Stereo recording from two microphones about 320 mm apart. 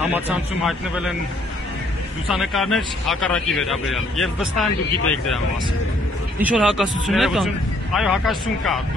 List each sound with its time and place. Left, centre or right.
0.7 s speech: centre
2.3 s speech: centre
6.4 s speech: centre